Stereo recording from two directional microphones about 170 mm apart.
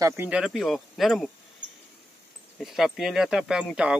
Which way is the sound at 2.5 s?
Centre (ahead or behind).